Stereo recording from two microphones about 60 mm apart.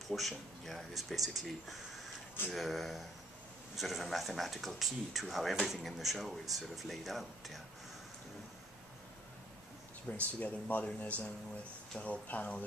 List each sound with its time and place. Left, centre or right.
0.1 s speech: centre
10.1 s speech: left